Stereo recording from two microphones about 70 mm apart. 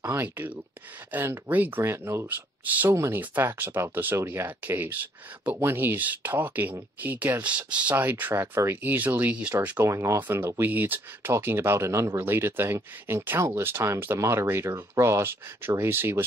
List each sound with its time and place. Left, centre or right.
0.0 s speech: right
1.8 s speech: right
2.2 s speech: right
7.9 s speech: right
9.8 s speech: right
10.1 s speech: right